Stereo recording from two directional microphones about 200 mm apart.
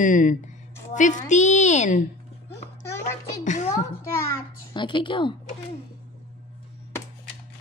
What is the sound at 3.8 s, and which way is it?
A child's voice, 15° left (ahead or behind).